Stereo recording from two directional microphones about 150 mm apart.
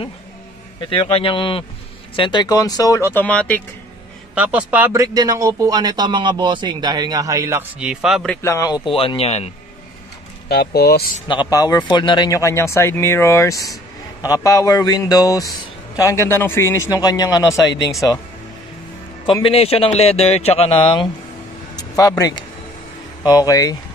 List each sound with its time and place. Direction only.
0.7 s a man's voice: 35° left (ahead or behind); by 3.6 s 10° left (ahead or behind)
4.4 s speech: 10° right (ahead or behind)
4.9 s a man's voice: 25° right (ahead or behind)
7.8 s a man's voice: 5° right (ahead or behind)
8.4 s speech: 20° left (ahead or behind)
8.9 s a man's voice: 40° left (ahead or behind)
10.5 s speech: 90° left
11.2 s speech: 30° left (ahead or behind)
19.4 s speech: 40° left (ahead or behind)
21.7 s a sound: 20° left (ahead or behind)
23.2 s speech: 25° left (ahead or behind)